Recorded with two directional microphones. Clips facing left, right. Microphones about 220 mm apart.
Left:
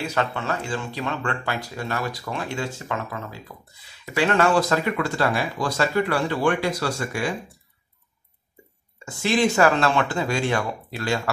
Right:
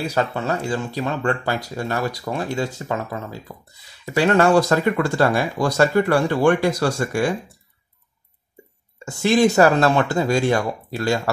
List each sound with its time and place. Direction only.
0.0 s speech: 35° right (ahead or behind)
9.0 s speech: 40° right (ahead or behind)